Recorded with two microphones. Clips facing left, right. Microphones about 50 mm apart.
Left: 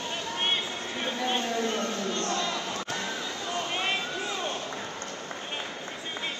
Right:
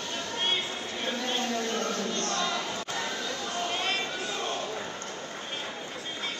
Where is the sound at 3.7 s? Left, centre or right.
Left.